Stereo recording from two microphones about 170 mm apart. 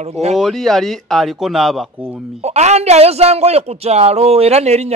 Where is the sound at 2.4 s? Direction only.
40° right (ahead or behind).